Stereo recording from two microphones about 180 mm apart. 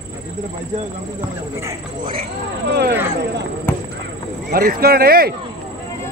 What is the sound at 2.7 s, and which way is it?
Speech, 65° right (ahead or behind).